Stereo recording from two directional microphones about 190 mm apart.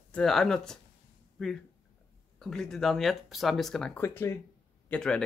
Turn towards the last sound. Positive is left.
turn(degrees=5)  # may be behind; listen again after turning